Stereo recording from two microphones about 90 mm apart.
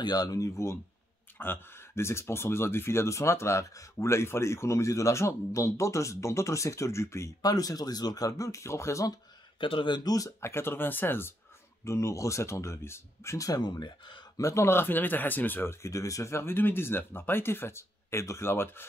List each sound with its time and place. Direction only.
0.0 s speech: 50° left (ahead or behind)
1.4 s speech: 25° left (ahead or behind)
9.6 s speech: 70° left (ahead or behind); by 10.5 s 40° left (ahead or behind)
10.5 s speech: 25° left (ahead or behind); by 14.2 s 55° left (ahead or behind)
14.3 s speech: 35° left (ahead or behind)